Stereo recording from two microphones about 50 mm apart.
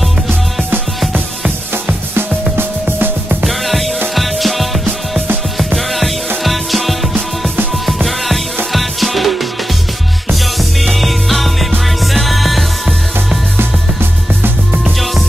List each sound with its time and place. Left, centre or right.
2.1 s music: right
3.4 s music: centre
5.8 s music: centre
10.6 s music: centre